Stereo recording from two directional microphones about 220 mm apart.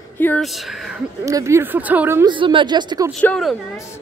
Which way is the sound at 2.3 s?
20° right (ahead or behind).